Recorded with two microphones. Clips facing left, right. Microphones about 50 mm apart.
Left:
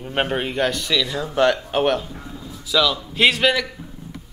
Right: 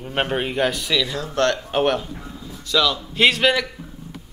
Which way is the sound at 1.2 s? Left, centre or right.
Centre.